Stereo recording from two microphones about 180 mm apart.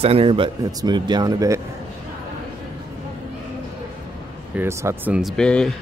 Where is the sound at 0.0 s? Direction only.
30° right (ahead or behind).